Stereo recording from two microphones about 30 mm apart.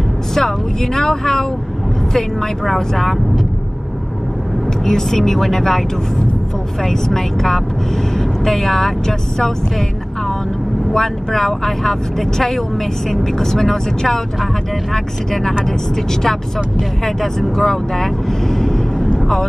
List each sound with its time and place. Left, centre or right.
0.3 s speech: centre
2.9 s speech: centre
4.8 s speech: centre
7.1 s speech: centre
15.6 s speech: centre
19.1 s vehicle: centre